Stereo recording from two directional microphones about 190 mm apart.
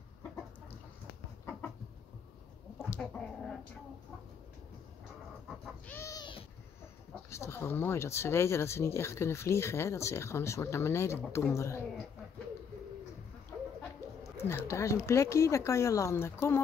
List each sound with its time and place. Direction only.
2.8 s chicken: 5° left (ahead or behind)
5.9 s cat: 15° left (ahead or behind)
7.2 s speech: 15° left (ahead or behind)
14.3 s speech: 15° left (ahead or behind)